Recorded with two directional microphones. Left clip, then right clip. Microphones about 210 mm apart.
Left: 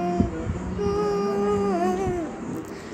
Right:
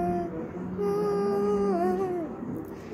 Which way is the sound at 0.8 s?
Centre (ahead or behind).